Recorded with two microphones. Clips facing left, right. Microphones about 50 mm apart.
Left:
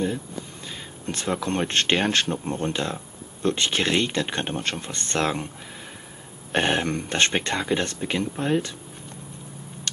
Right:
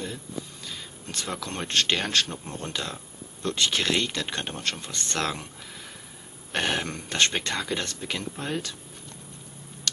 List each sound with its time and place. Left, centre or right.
0.7 s speech: left
6.5 s speech: left